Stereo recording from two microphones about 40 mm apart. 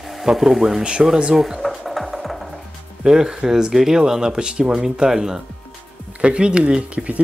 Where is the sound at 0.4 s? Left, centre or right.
Centre.